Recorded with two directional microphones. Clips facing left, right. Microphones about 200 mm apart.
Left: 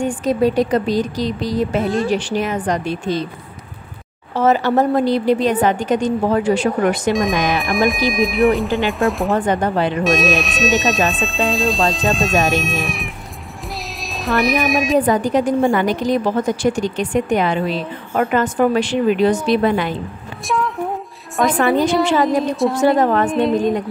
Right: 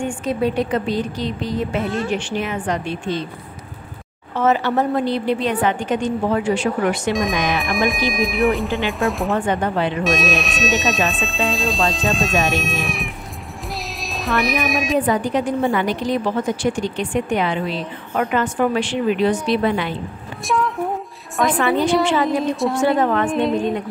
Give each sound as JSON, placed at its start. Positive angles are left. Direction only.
{"t": 0.0, "sound": "speech", "side_deg": 40}
{"t": 4.4, "sound": "speech", "side_deg": 40}
{"t": 7.1, "sound": "speech", "side_deg": 0}
{"t": 9.3, "sound": "speech", "side_deg": 40}
{"t": 10.0, "sound": "speech", "side_deg": 0}
{"t": 14.1, "sound": "speech", "side_deg": 0}
{"t": 15.0, "sound": "a woman's voice", "side_deg": 40}
{"t": 20.4, "sound": "speech", "side_deg": 0}
{"t": 21.5, "sound": "a woman's voice", "side_deg": 45}
{"t": 22.6, "sound": "speech", "side_deg": 0}
{"t": 22.8, "sound": "speech", "side_deg": 40}
{"t": 23.3, "sound": "speech", "side_deg": 0}